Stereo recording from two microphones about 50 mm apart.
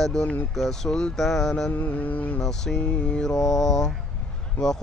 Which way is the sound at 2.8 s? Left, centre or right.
Left.